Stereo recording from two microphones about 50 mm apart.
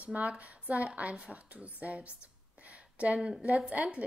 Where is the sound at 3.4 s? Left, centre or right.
Right.